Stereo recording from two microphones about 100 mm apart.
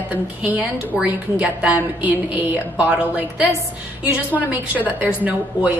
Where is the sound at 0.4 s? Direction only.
15° right (ahead or behind).